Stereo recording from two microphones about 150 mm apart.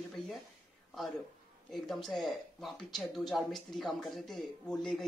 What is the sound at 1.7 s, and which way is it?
Speech, centre (ahead or behind).